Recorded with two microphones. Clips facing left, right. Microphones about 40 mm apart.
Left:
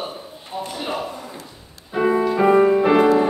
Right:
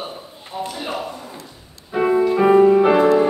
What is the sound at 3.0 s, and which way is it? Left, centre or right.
Music, left.